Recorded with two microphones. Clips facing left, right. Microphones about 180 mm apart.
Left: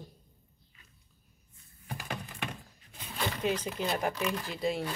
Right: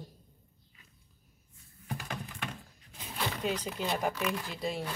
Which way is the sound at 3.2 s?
Centre (ahead or behind).